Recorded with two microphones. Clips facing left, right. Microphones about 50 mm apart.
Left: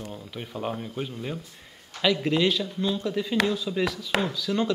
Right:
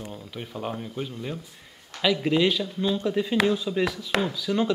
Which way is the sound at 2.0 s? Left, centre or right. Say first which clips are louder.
Right 1 dB; centre.